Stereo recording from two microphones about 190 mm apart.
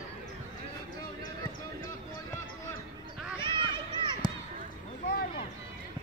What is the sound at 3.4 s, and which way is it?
Run, 25° right (ahead or behind).